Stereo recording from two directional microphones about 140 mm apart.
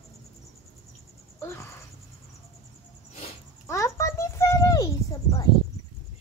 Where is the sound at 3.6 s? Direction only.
20° left (ahead or behind).